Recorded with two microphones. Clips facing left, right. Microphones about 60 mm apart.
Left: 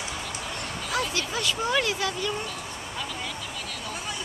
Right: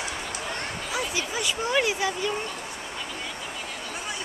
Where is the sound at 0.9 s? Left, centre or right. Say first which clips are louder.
Left 1 dB; centre.